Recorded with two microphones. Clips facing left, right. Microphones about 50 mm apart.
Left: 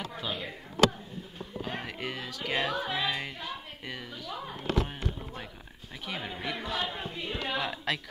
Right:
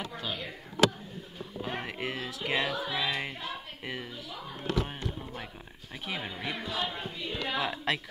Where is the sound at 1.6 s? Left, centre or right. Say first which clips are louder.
Right 1 dB; centre.